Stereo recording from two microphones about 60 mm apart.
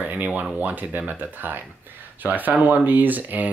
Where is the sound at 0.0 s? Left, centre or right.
Right.